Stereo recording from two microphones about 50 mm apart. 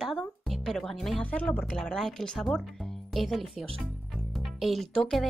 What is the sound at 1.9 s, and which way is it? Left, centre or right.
Speech, centre.